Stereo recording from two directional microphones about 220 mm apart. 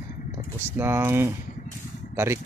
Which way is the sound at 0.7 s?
10° right (ahead or behind).